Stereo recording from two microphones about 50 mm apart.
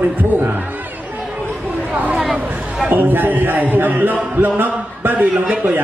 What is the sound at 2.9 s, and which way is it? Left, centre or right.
A man's voice, right.